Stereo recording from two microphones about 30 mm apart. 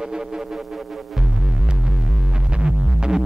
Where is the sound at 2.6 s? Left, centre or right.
Right.